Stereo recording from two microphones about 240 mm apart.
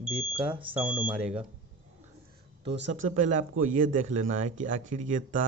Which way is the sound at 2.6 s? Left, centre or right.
Right.